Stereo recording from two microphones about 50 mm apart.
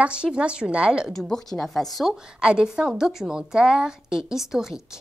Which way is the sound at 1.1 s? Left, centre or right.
Centre.